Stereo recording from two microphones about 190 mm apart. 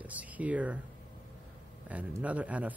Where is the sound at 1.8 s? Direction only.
5° right (ahead or behind).